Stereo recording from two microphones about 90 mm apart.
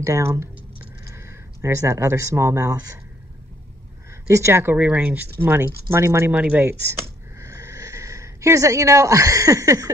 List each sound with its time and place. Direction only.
0.0 s speech: 35° right (ahead or behind)
4.3 s speech: 30° right (ahead or behind)
4.7 s speech: 15° right (ahead or behind); by 6.3 s 30° right (ahead or behind)
6.3 s speech: 15° right (ahead or behind)
6.6 s a sound: 25° right (ahead or behind)